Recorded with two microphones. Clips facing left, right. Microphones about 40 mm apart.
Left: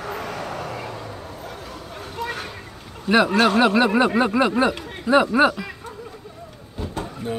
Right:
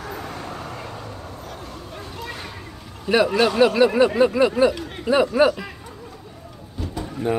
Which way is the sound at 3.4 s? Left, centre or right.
Left.